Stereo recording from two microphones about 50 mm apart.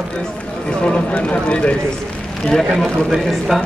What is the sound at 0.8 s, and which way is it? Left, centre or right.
Speech, left.